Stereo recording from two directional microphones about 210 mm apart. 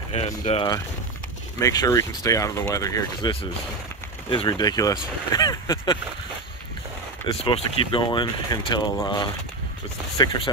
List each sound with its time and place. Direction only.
0.1 s speech: 30° left (ahead or behind)
1.6 s speech: 15° left (ahead or behind)
7.2 s speech: 25° left (ahead or behind)